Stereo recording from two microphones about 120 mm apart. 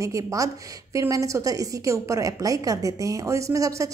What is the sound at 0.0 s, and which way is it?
A woman's voice, 25° right (ahead or behind).